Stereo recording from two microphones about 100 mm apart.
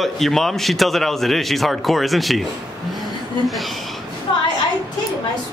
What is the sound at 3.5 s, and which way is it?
Speech, centre (ahead or behind).